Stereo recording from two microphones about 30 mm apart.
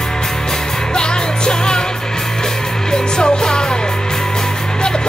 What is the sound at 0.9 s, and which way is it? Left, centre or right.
Music, left.